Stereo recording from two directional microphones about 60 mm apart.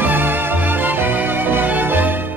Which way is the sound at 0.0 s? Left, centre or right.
Right.